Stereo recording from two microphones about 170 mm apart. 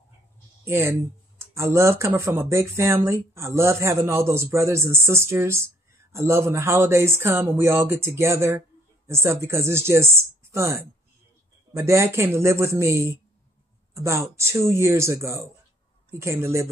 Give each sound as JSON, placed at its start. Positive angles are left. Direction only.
{"t": 0.7, "sound": "speech", "side_deg": -15}